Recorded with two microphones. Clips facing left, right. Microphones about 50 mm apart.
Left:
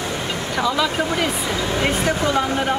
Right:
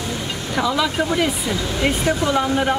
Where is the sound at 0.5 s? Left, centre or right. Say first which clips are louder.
Right 1 dB; centre.